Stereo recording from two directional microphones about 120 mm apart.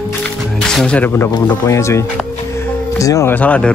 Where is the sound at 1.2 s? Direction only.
25° left (ahead or behind).